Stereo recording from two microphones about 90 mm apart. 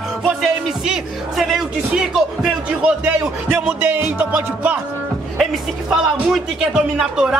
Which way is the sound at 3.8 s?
20° right (ahead or behind).